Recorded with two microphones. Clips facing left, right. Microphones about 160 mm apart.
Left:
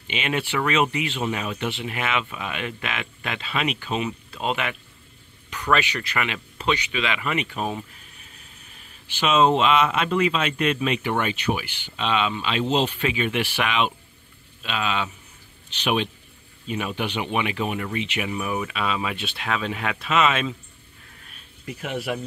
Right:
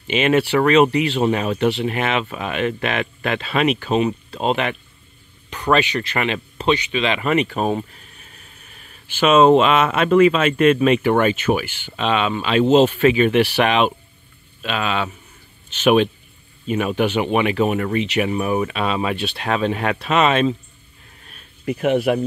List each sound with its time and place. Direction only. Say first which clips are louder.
0.1 s speech: right 10 dB; 45° right (ahead or behind)
9.0 s speech: right 6 dB; 50° right (ahead or behind)
21.6 s speech: right 11 dB; 65° right (ahead or behind)